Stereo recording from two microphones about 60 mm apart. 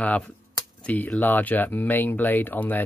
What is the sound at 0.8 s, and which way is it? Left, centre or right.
Speech, left.